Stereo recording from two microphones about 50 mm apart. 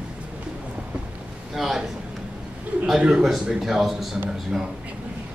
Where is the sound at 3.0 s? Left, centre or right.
Centre.